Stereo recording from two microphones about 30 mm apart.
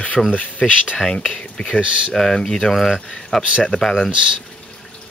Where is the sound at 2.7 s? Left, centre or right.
Centre.